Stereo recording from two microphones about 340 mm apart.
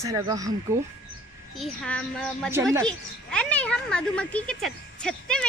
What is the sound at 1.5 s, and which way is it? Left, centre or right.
Speech, centre.